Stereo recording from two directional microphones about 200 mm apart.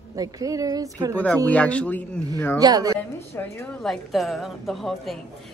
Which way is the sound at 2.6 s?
20° right (ahead or behind).